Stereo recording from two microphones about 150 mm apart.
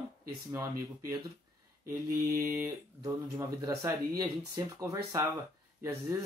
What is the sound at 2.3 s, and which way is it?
Speech, 20° right (ahead or behind).